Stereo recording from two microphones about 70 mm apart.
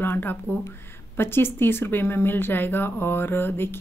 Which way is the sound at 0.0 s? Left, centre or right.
Left.